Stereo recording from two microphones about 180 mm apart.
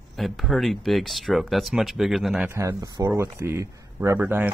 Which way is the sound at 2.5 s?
15° right (ahead or behind).